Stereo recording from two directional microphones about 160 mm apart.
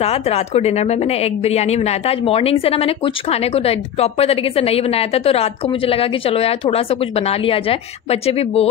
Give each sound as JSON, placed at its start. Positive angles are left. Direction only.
{"t": 0.0, "sound": "a woman's voice", "side_deg": 40}